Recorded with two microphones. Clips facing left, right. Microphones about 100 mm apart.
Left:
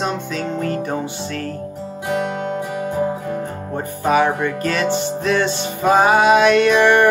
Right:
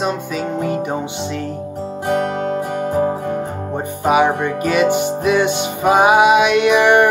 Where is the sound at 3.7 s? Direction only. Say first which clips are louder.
Right 1 dB; 15° right (ahead or behind).